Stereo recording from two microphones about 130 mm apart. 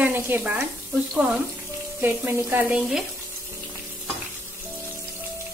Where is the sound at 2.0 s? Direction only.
20° right (ahead or behind).